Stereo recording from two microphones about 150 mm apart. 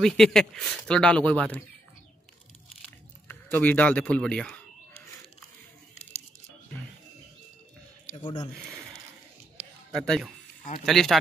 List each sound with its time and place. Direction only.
0.0 s speech: 5° left (ahead or behind)
3.3 s speech: 10° left (ahead or behind)
8.2 s speech: 30° left (ahead or behind)
9.9 s speech: 5° left (ahead or behind)